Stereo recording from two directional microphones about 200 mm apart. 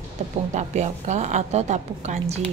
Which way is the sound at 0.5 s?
35° right (ahead or behind).